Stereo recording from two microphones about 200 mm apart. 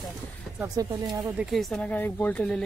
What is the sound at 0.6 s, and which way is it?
Speech, 20° right (ahead or behind).